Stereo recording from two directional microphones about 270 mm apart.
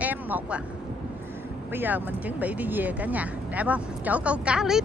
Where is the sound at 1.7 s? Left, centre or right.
Centre.